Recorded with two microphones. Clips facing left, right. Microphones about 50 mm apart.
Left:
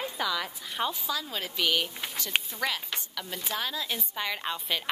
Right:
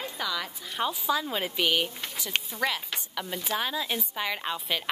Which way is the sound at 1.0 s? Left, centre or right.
Centre.